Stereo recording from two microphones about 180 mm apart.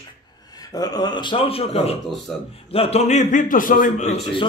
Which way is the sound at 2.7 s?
35° left (ahead or behind).